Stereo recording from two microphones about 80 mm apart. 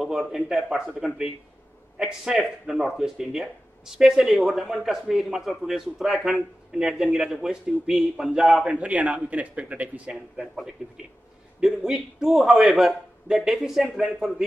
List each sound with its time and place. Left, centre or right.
0.0 s a man's voice: centre
8.6 s a man's voice: centre
11.6 s speech: centre